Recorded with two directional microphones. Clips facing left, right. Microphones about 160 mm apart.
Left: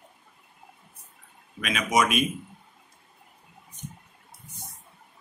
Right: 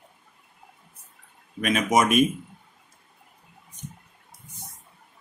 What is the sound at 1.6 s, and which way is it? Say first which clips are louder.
Speech: right 6 dB; 45° right (ahead or behind).